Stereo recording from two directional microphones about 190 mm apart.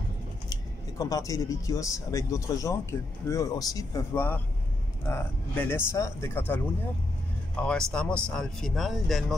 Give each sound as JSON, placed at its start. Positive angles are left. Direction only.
{"t": 0.5, "sound": "speech", "side_deg": 20}